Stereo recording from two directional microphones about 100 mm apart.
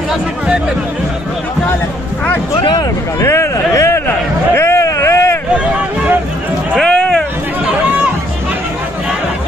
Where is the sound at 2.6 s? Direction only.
40° left (ahead or behind).